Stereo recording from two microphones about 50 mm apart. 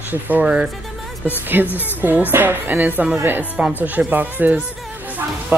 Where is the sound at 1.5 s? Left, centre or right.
Right.